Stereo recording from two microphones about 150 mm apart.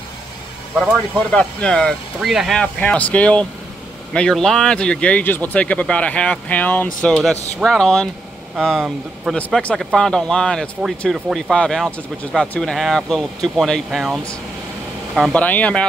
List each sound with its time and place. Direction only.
1.3 s speech: 5° left (ahead or behind)
9.4 s speech: 10° left (ahead or behind)
15.4 s speech: 10° left (ahead or behind)